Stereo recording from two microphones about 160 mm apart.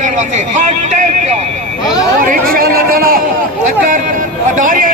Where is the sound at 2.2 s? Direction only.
60° right (ahead or behind).